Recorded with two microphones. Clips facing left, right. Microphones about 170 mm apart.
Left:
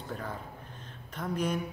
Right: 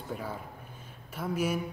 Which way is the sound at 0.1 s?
10° right (ahead or behind).